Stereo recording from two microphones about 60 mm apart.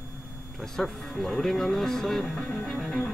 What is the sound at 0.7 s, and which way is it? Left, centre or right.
Speech, centre.